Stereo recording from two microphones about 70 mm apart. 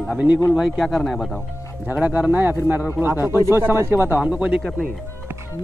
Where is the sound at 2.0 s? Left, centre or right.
Right.